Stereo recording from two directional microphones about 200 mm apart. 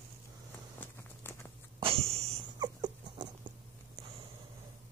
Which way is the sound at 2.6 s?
20° right (ahead or behind).